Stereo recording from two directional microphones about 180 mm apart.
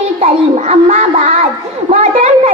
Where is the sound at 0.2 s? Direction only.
35° right (ahead or behind).